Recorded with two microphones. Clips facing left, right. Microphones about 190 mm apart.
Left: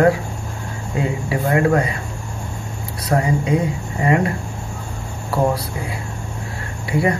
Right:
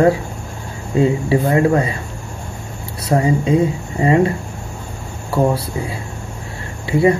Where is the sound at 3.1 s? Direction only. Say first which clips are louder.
Right 3 dB; 25° right (ahead or behind).